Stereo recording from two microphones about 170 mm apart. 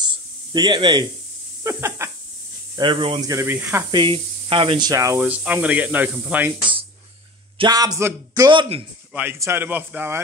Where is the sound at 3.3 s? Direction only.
15° right (ahead or behind).